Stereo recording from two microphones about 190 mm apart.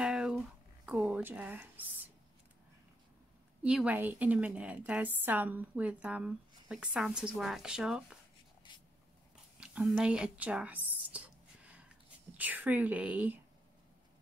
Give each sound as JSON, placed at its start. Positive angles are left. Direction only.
{"t": 0.0, "sound": "a sound", "side_deg": -5}
{"t": 0.8, "sound": "speech", "side_deg": -10}
{"t": 3.6, "sound": "a woman's voice", "side_deg": -5}
{"t": 8.7, "sound": "writing", "side_deg": 25}
{"t": 9.6, "sound": "whispering", "side_deg": -5}
{"t": 12.4, "sound": "a woman's voice", "side_deg": -10}